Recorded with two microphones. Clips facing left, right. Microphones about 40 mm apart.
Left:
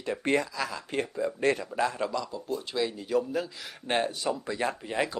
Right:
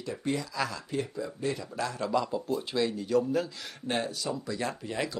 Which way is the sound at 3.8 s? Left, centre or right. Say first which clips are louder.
Left 3 dB; left.